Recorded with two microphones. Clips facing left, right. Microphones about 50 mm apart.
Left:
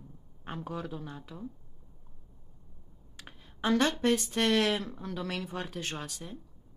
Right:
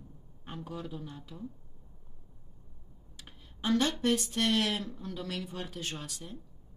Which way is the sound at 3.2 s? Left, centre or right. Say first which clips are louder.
Left 2 dB; left.